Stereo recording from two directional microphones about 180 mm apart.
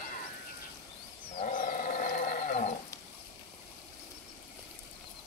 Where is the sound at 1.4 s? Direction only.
45° left (ahead or behind).